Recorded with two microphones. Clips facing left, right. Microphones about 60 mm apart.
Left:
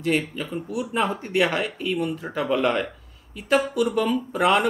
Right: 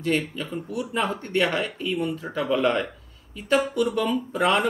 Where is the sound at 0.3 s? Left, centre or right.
Centre.